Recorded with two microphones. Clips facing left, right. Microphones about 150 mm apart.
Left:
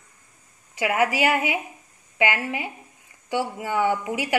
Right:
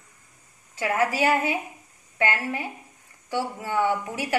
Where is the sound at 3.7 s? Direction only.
20° left (ahead or behind).